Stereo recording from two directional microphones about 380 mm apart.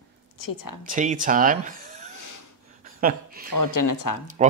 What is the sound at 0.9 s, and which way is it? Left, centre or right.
Speech, centre.